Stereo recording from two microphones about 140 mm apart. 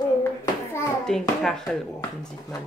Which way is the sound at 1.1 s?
5° left (ahead or behind).